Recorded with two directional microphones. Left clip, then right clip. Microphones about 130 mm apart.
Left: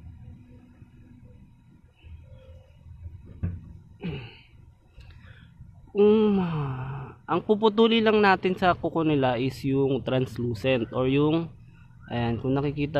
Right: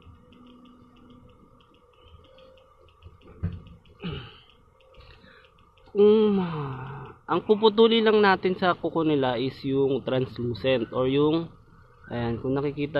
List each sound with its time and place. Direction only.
5.9 s speech: 20° left (ahead or behind)